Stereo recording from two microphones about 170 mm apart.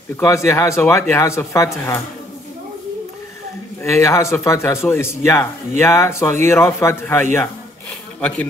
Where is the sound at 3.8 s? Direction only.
15° left (ahead or behind).